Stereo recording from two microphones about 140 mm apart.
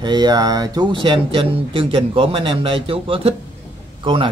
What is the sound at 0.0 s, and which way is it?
Speech, 30° right (ahead or behind).